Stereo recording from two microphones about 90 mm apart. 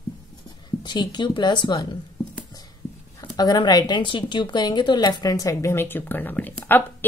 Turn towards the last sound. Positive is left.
turn(degrees=20)  # may be behind; listen again after turning